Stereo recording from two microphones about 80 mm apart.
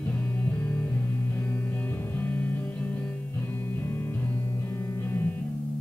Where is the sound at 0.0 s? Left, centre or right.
Centre.